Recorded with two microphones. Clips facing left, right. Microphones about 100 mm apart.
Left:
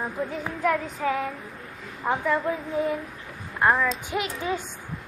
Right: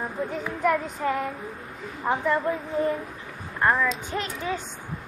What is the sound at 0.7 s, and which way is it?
A woman's voice, centre (ahead or behind).